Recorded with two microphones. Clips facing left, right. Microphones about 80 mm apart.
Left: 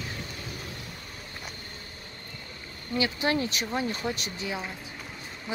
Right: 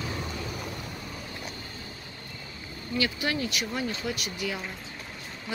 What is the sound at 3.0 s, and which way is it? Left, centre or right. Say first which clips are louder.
Speech: left 2 dB; left.